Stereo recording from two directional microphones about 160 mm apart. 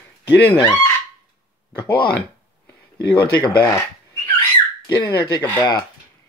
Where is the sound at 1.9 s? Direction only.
75° left (ahead or behind).